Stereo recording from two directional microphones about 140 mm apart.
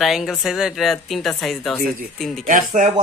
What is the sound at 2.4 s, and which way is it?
Speech, 70° right (ahead or behind).